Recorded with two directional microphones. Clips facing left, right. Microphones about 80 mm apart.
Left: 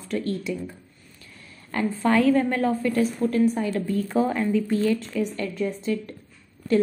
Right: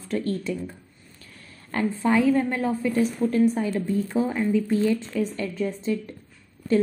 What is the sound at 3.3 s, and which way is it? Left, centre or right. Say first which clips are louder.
A woman's voice: even; right.